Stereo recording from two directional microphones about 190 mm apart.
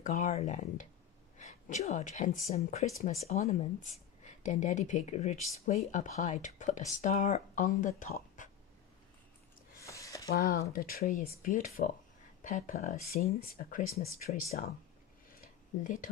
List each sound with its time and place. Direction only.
0.0 s speech: 40° left (ahead or behind)
9.8 s a sound: 15° left (ahead or behind)
10.3 s speech: 50° left (ahead or behind)
15.8 s speech: 45° left (ahead or behind)